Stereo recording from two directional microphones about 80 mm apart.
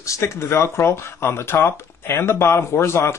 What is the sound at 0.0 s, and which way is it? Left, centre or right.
Speech, left.